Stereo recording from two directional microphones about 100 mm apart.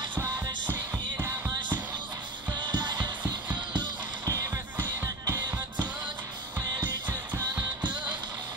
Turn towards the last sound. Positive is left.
turn(degrees=-40)  # may be behind; listen again after turning